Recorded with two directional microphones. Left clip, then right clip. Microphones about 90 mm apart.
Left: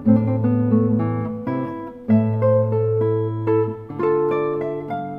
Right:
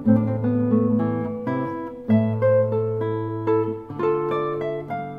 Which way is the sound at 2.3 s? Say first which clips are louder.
Even; 10° left (ahead or behind).